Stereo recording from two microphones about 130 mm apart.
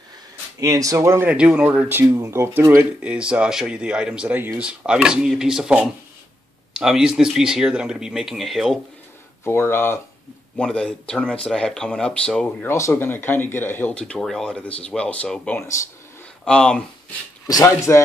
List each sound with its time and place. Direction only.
0.6 s speech: 25° right (ahead or behind)
1.3 s speech: 10° right (ahead or behind)
9.4 s speech: 20° left (ahead or behind)
10.6 s speech: 5° left (ahead or behind)
12.6 s speech: 20° left (ahead or behind)
17.5 s speech: 25° left (ahead or behind)